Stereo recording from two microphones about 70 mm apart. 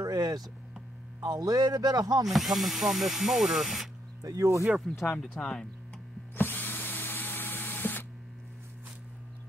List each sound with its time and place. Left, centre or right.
0.0 s a sound: right
1.2 s speech: right
2.2 s speech: centre
4.2 s speech: right
5.4 s speech: centre
6.3 s drill: left